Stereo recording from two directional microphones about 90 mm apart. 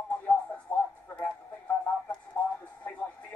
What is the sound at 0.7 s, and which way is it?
Radio, 25° left (ahead or behind).